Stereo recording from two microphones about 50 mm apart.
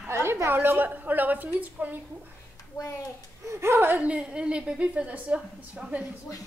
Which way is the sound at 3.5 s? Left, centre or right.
Right.